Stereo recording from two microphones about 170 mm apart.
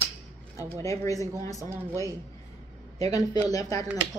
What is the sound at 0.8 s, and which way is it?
Speech, 20° left (ahead or behind).